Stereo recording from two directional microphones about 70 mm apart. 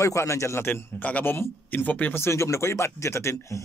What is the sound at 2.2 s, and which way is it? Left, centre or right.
Speech, left.